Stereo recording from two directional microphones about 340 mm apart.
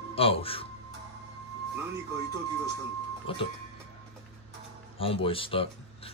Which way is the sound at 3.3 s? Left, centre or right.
Centre.